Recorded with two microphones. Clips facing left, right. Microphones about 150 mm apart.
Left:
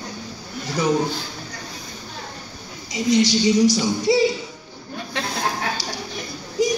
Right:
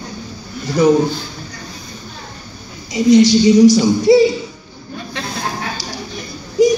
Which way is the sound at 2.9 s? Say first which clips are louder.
Right 8 dB; 55° right (ahead or behind).